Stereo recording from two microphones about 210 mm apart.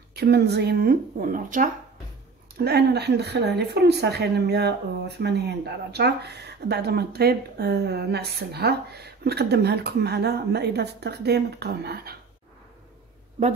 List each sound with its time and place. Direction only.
0.1 s speech: 50° right (ahead or behind)
2.6 s speech: 50° right (ahead or behind)